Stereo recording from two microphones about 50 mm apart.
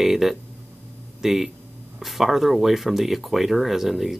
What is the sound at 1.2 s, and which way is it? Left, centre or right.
Speech, centre.